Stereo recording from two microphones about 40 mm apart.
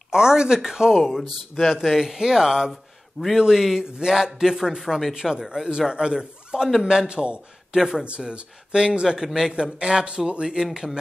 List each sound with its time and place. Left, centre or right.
0.1 s speech: centre
7.1 s speech: right